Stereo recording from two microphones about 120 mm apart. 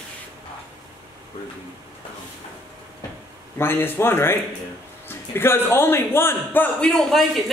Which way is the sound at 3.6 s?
20° left (ahead or behind).